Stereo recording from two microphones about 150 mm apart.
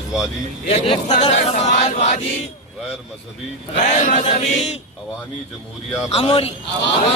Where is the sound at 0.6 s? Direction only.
40° left (ahead or behind).